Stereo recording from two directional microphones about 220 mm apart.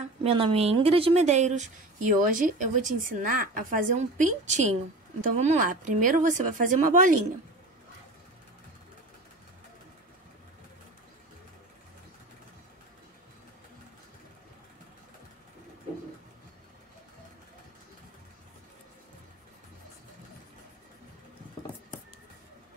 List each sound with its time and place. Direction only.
0.2 s a woman's voice: 25° right (ahead or behind)